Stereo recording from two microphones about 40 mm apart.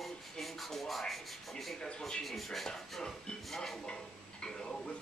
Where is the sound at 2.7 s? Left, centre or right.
Centre.